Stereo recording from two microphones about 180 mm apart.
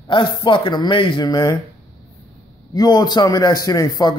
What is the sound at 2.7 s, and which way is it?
Speech, 20° left (ahead or behind).